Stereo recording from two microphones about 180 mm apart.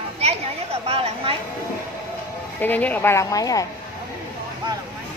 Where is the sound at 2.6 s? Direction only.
10° left (ahead or behind).